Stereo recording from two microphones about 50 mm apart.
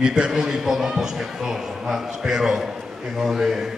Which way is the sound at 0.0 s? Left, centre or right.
Centre.